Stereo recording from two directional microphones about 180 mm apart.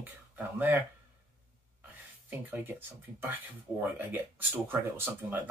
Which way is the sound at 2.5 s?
10° right (ahead or behind).